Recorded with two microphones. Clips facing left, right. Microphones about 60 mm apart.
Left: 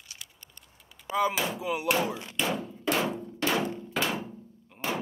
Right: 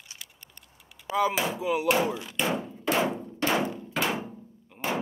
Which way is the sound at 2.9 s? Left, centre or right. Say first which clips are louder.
Right 4 dB; right.